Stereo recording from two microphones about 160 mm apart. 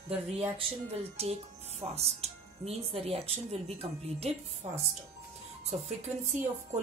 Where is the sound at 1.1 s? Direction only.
40° right (ahead or behind).